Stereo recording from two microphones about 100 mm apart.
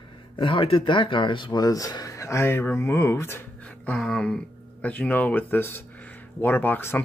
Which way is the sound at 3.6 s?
15° left (ahead or behind).